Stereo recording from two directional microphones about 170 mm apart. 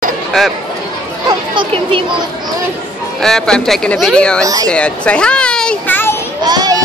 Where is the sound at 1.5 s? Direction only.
30° right (ahead or behind).